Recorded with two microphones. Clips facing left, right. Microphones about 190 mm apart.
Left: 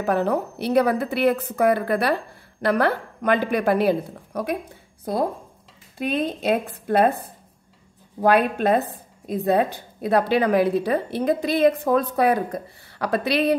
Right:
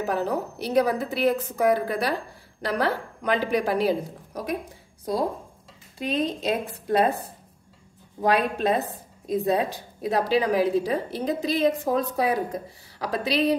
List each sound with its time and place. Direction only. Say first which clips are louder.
0.0 s a woman's voice: left 4 dB; 60° left (ahead or behind)
5.9 s a woman's voice: left 2 dB; 55° left (ahead or behind)
8.2 s a woman's voice: left 4 dB; 60° left (ahead or behind)